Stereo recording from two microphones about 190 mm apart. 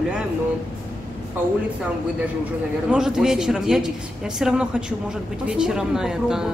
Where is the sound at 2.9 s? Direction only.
5° right (ahead or behind).